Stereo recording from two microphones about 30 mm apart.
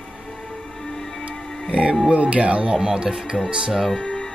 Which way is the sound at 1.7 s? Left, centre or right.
Right.